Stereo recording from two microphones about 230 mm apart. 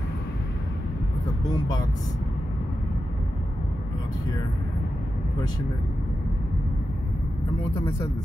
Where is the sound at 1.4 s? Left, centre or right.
Centre.